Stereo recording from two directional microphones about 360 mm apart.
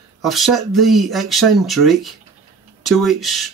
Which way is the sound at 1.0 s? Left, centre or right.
Centre.